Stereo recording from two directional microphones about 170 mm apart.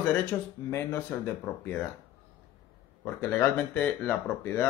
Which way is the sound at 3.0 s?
10° left (ahead or behind).